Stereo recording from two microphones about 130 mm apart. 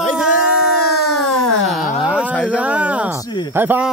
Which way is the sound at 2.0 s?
10° right (ahead or behind).